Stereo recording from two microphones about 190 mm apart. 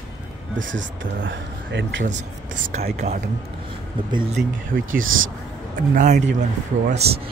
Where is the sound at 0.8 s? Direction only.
75° right (ahead or behind).